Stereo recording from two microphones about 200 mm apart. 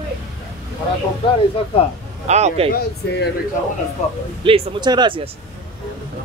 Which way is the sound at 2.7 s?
50° left (ahead or behind).